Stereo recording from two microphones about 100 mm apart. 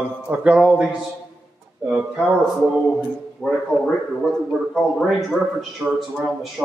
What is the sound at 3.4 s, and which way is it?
Speech, centre (ahead or behind).